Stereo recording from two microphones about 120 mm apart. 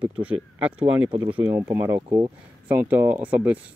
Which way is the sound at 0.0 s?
10° right (ahead or behind).